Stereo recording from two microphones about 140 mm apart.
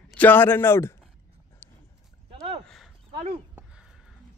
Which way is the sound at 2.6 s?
Centre (ahead or behind).